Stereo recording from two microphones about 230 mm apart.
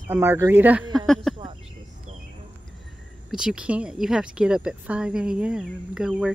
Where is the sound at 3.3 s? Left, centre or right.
Centre.